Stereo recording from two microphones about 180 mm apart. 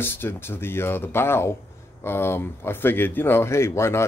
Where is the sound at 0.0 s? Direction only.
10° left (ahead or behind).